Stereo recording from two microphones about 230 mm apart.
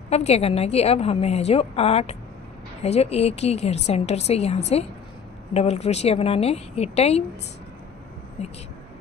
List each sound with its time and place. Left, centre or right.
0.1 s a woman's voice: left
8.4 s a woman's voice: left